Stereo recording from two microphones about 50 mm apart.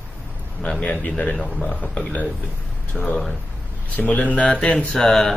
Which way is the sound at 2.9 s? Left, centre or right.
Centre.